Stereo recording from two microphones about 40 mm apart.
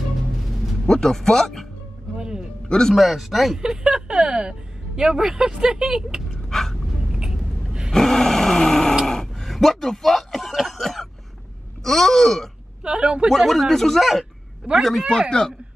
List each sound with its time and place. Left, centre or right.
0.8 s speech: centre
2.1 s music: right
2.9 s speech: centre
3.6 s speech: centre
6.5 s a sound: centre
7.2 s vehicle: centre
7.9 s grunt: centre
9.0 s music: centre
10.5 s throat clearing: centre
11.8 s speech: centre
12.8 s speech: centre
13.4 s speech: centre
14.6 s speech: centre
15.0 s speech: centre